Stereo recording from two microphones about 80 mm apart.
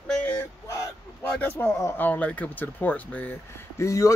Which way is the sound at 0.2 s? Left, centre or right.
Centre.